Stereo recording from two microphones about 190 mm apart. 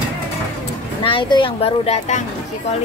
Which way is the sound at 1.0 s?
25° left (ahead or behind).